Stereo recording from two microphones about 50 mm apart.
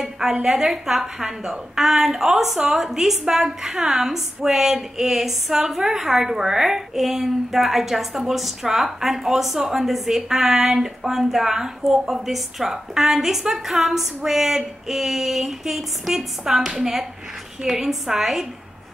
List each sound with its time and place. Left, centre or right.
0.0 s a woman's voice: centre